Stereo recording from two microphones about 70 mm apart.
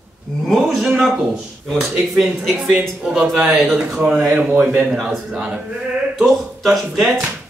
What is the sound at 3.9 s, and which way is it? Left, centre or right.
Speech, centre.